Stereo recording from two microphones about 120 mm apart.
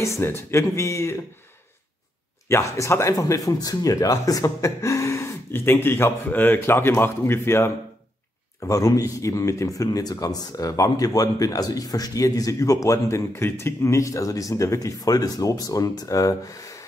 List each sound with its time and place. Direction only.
0.0 s speech: 20° left (ahead or behind)
2.4 s speech: 25° left (ahead or behind)